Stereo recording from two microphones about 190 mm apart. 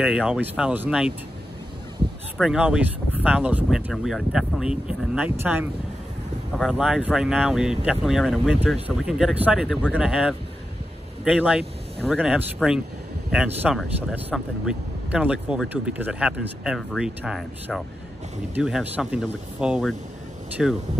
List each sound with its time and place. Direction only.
0.0 s speech: 5° right (ahead or behind)
2.3 s speech: 5° right (ahead or behind)
6.5 s speech: centre (ahead or behind)